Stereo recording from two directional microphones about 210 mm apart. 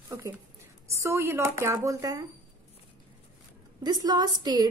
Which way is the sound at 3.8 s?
20° right (ahead or behind).